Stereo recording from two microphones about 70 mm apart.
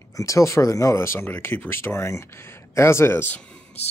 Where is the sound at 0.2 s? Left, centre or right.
Left.